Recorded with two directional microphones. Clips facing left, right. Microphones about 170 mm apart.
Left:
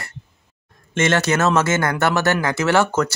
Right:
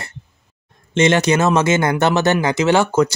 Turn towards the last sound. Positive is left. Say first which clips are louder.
# right 3 dB
turn(degrees=-15)  # may be behind; listen again after turning